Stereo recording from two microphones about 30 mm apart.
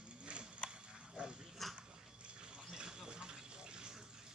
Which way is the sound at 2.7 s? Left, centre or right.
Right.